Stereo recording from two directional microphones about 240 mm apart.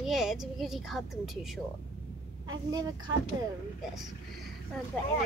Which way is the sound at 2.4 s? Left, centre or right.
Centre.